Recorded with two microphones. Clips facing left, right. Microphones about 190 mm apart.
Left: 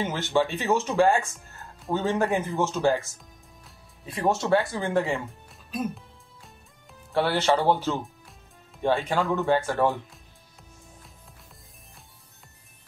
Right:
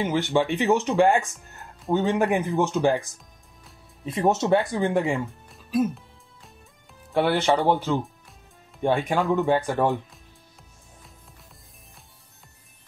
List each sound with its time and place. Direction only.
0.0 s speech: 15° right (ahead or behind)
7.1 s speech: 15° right (ahead or behind)